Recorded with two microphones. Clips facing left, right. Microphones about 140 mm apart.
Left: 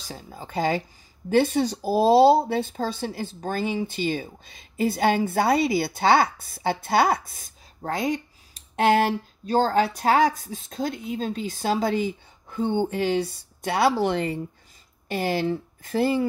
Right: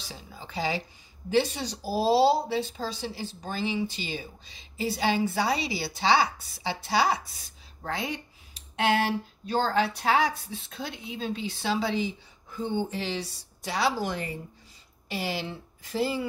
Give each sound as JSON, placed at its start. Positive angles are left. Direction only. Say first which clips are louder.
{"t": 0.0, "sound": "speech", "louder": "left 5 dB", "side_deg": 45}
{"t": 15.0, "sound": "speech", "louder": "left 8 dB", "side_deg": 50}